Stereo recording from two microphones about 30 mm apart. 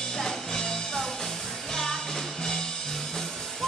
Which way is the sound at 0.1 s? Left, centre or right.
Centre.